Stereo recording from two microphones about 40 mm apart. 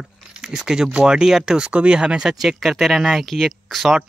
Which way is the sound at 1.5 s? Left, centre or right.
Right.